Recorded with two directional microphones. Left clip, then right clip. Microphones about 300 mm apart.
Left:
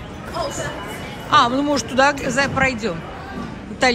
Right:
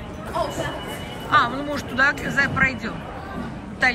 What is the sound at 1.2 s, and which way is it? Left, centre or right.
A woman's voice, centre.